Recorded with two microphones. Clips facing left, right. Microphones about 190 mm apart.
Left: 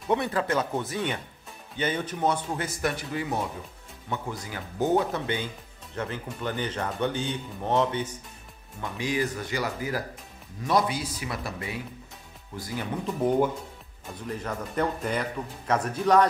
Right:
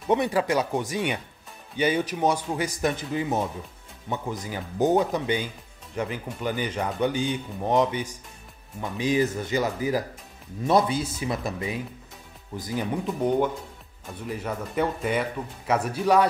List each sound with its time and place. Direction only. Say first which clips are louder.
0.1 s speech: right 3 dB; 15° right (ahead or behind)
13.0 s speech: left 1 dB; 5° left (ahead or behind)
14.2 s speech: right 2 dB; 5° right (ahead or behind)